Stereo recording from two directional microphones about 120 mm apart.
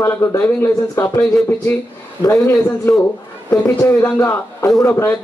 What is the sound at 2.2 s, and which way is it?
A man's voice, 25° left (ahead or behind).